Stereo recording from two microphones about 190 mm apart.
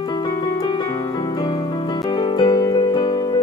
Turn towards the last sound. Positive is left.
turn(degrees=20)  # may be behind; listen again after turning